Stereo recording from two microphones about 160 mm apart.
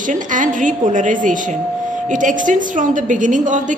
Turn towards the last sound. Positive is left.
turn(degrees=-55)  # may be behind; listen again after turning